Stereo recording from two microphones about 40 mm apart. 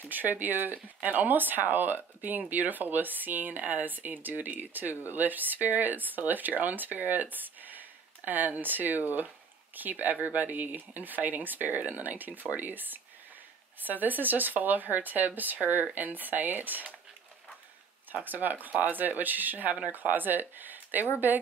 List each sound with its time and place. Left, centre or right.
0.0 s speech: right
18.1 s speech: right